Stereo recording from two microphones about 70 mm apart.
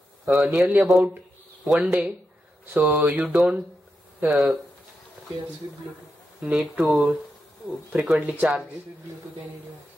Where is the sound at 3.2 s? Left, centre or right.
Centre.